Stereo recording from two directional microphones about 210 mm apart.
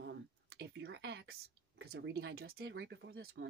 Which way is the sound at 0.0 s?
55° right (ahead or behind).